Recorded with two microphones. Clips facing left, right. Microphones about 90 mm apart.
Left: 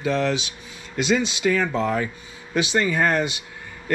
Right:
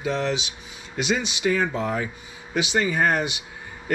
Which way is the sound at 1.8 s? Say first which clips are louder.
Left 3 dB; 60° left (ahead or behind).